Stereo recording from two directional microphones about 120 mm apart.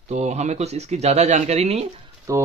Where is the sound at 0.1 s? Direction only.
65° right (ahead or behind).